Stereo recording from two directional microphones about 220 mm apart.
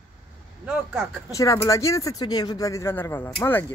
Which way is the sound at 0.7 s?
5° right (ahead or behind).